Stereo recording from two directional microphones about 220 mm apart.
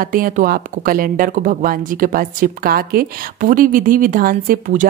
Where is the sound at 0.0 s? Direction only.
40° right (ahead or behind).